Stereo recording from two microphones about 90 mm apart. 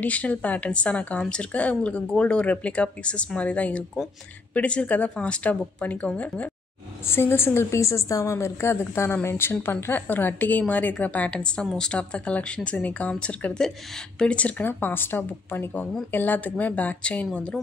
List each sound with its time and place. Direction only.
0.0 s a woman's voice: 15° left (ahead or behind)